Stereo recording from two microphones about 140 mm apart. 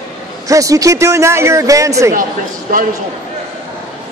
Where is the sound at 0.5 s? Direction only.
25° right (ahead or behind).